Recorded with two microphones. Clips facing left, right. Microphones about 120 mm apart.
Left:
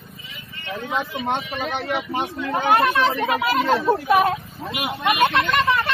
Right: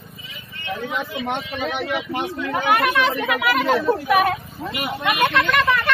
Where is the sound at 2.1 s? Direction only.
30° left (ahead or behind).